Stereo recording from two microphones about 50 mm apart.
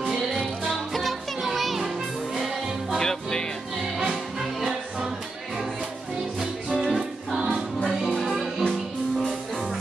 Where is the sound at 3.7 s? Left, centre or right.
Centre.